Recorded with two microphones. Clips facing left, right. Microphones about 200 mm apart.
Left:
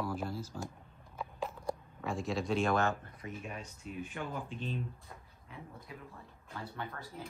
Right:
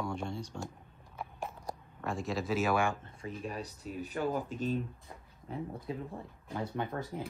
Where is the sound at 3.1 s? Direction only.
30° right (ahead or behind).